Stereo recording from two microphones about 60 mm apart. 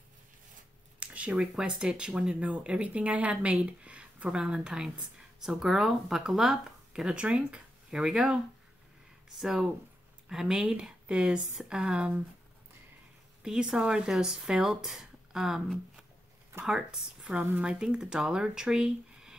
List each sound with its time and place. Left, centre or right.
0.9 s a sound: right
1.4 s a woman's voice: centre
9.4 s speech: centre
13.4 s speech: centre